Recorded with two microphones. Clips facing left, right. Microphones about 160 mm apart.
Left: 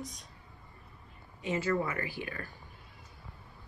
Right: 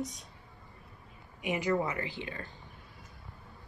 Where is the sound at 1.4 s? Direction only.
15° right (ahead or behind).